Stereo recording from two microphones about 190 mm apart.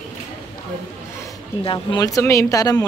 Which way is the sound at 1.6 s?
25° left (ahead or behind).